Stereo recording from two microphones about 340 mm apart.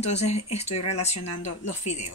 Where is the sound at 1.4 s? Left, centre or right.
Left.